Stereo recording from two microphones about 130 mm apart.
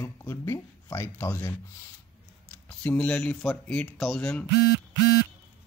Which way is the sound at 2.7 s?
10° left (ahead or behind).